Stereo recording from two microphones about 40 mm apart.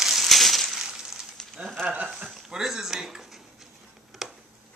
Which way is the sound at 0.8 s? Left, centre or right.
Centre.